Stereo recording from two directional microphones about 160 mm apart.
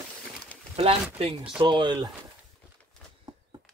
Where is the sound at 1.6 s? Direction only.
30° right (ahead or behind).